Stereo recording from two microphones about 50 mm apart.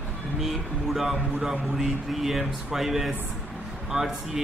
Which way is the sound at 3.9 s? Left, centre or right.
Right.